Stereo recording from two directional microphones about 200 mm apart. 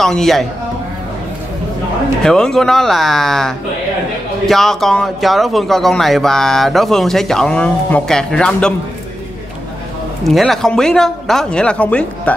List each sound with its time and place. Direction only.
0.0 s speech: centre (ahead or behind)
2.2 s speech: 5° left (ahead or behind)
10.2 s speech: centre (ahead or behind)